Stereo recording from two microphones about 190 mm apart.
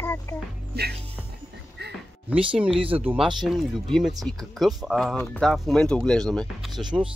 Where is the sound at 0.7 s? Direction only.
55° right (ahead or behind).